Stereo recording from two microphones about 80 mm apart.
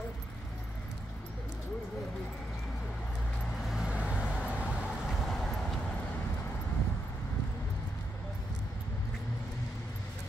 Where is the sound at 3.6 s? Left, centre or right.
Centre.